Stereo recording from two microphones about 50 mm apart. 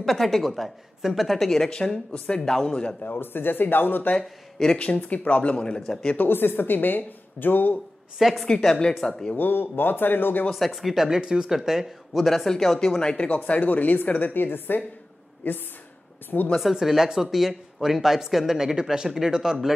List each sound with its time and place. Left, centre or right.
0.0 s a woman's voice: centre
1.7 s speech: centre
3.2 s a man's voice: left
4.2 s speech: centre
4.7 s speech: left
6.1 s speech: left
8.2 s a woman's voice: centre
8.5 s speech: centre
9.4 s a man's voice: left
10.5 s a woman's voice: centre
11.1 s speech: centre
13.4 s speech: left
16.7 s speech: centre